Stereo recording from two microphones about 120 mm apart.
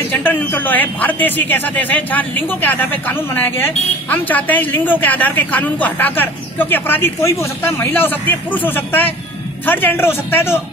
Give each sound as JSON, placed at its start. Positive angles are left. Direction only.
{"t": 0.1, "sound": "a man's voice", "side_deg": 15}